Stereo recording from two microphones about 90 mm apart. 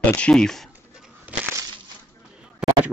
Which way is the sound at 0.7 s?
15° right (ahead or behind).